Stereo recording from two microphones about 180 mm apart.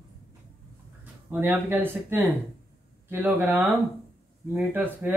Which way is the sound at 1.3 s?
10° right (ahead or behind).